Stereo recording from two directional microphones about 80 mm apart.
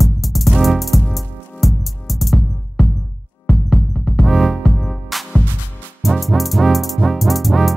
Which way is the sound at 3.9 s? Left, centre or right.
Centre.